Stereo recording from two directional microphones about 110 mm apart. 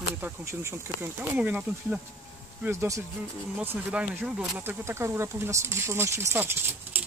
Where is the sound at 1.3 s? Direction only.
15° right (ahead or behind).